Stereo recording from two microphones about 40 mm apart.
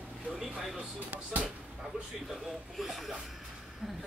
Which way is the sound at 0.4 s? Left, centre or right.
Centre.